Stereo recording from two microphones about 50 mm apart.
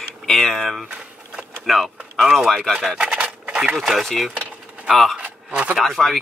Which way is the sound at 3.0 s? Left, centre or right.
Right.